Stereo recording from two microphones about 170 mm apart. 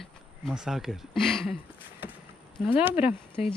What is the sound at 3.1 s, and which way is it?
Speech, 30° left (ahead or behind).